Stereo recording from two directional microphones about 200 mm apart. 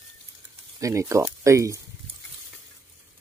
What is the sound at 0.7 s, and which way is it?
Speech, 15° right (ahead or behind).